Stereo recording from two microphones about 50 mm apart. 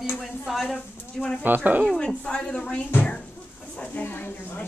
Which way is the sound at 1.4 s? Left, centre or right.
Right.